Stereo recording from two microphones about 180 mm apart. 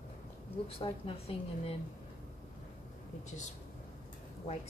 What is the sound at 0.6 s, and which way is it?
A woman's voice, 30° left (ahead or behind).